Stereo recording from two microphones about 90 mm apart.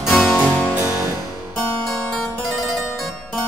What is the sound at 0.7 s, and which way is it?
Music, 20° right (ahead or behind).